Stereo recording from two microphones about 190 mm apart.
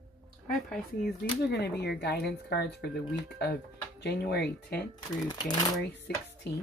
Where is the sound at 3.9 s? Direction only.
60° left (ahead or behind).